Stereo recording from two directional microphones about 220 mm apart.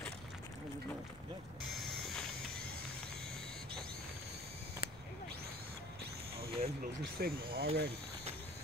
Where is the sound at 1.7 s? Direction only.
Centre (ahead or behind).